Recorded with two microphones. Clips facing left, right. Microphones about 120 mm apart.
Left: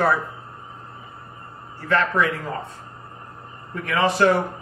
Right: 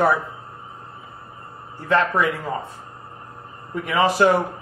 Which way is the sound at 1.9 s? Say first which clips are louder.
Right 1 dB; 5° right (ahead or behind).